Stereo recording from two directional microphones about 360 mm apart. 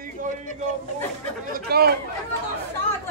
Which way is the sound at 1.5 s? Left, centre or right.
Right.